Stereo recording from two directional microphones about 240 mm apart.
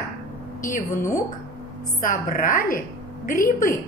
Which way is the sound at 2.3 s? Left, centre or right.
Left.